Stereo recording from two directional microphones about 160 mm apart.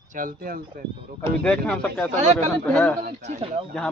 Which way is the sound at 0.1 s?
60° right (ahead or behind).